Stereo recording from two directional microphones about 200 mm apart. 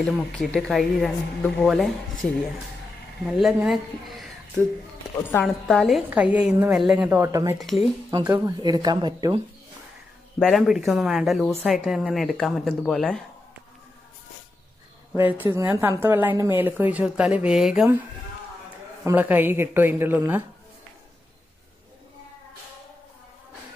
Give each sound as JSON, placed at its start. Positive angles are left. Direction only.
{"t": 0.0, "sound": "speech", "side_deg": 0}
{"t": 3.3, "sound": "speech", "side_deg": 0}
{"t": 7.5, "sound": "speech", "side_deg": 0}
{"t": 8.1, "sound": "speech", "side_deg": -15}
{"t": 10.4, "sound": "speech", "side_deg": 0}
{"t": 15.1, "sound": "speech", "side_deg": -10}
{"t": 19.0, "sound": "speech", "side_deg": -10}